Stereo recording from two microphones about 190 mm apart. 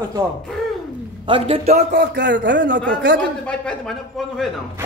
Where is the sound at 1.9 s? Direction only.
65° right (ahead or behind).